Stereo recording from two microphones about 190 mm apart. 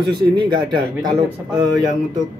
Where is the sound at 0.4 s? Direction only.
25° right (ahead or behind).